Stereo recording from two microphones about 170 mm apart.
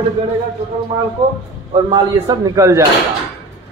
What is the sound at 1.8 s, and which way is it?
Speech, 25° right (ahead or behind).